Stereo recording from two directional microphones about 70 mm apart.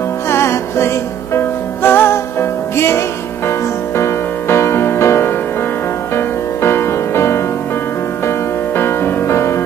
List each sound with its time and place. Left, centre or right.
0.3 s music: left
4.0 s music: left
8.7 s music: left